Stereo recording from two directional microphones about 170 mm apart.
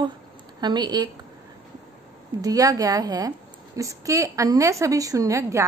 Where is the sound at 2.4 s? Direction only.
20° right (ahead or behind).